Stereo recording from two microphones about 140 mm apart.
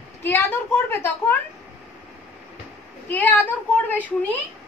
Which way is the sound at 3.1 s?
10° left (ahead or behind).